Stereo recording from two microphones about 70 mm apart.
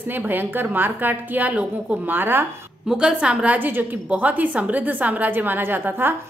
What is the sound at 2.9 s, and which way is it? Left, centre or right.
A woman's voice, centre.